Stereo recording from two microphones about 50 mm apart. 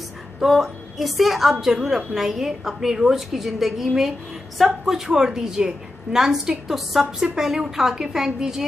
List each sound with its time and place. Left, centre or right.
0.4 s a woman's voice: centre